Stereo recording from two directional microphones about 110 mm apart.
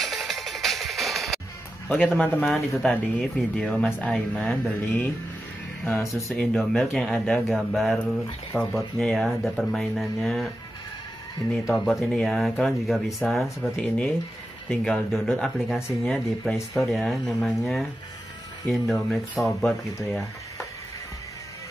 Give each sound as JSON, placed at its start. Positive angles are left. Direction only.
{"t": 0.0, "sound": "music", "side_deg": 0}
{"t": 1.9, "sound": "speech", "side_deg": 15}
{"t": 2.5, "sound": "speech", "side_deg": 0}
{"t": 5.9, "sound": "speech", "side_deg": 20}
{"t": 6.3, "sound": "speech", "side_deg": 10}
{"t": 11.6, "sound": "speech", "side_deg": 0}